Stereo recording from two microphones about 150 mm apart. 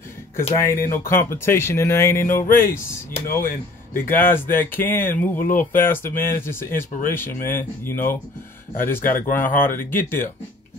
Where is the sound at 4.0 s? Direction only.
15° left (ahead or behind).